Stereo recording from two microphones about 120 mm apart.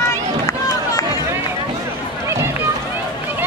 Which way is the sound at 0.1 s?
25° left (ahead or behind).